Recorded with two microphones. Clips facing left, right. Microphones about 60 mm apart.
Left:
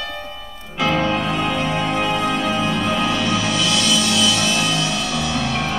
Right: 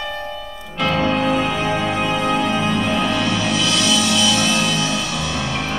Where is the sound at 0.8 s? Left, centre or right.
Centre.